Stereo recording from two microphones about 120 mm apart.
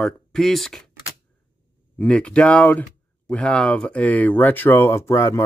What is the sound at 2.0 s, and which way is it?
Speech, 10° left (ahead or behind).